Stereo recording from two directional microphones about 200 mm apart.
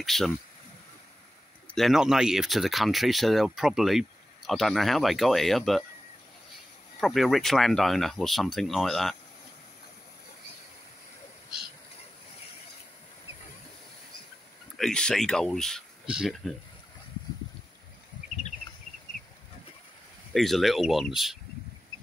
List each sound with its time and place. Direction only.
0.0 s speech: centre (ahead or behind)
1.8 s speech: centre (ahead or behind)
7.0 s speech: centre (ahead or behind)
14.8 s speech: 5° left (ahead or behind)
20.3 s speech: centre (ahead or behind)